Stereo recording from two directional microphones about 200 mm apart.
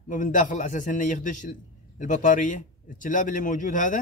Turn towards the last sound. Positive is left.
turn(degrees=40)  # may be behind; listen again after turning